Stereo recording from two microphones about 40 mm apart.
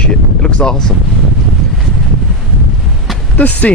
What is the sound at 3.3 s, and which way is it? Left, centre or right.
Speech, left.